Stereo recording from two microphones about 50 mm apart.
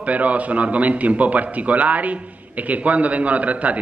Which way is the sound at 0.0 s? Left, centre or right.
Right.